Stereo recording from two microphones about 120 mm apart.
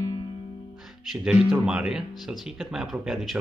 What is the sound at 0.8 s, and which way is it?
Music, 5° right (ahead or behind).